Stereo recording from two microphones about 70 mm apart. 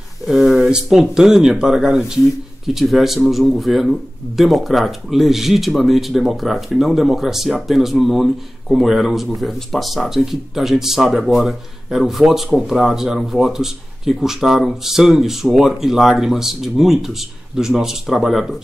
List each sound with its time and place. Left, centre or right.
0.3 s speech: centre